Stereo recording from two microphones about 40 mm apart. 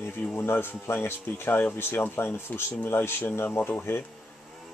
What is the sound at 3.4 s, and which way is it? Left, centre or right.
Speech, left.